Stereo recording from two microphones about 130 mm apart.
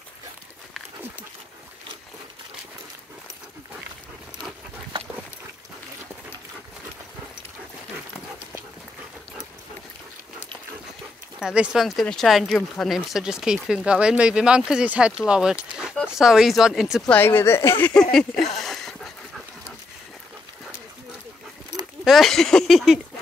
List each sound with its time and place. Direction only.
11.3 s speech: 5° right (ahead or behind)
17.1 s speech: 15° left (ahead or behind)
18.6 s dog: centre (ahead or behind)
22.0 s a sound: centre (ahead or behind)